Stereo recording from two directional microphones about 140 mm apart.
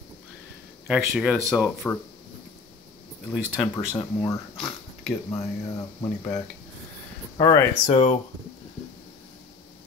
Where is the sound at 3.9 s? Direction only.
35° left (ahead or behind).